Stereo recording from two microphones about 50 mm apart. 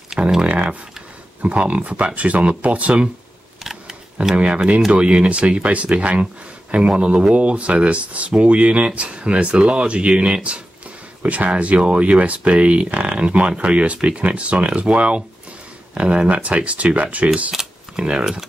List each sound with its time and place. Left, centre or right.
0.4 s computer keyboard: right
1.4 s speech: right
3.6 s camera: centre
4.4 s speech: right
17.5 s speech: centre